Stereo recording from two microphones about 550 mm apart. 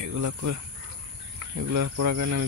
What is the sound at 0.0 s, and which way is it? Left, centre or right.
Speech, right.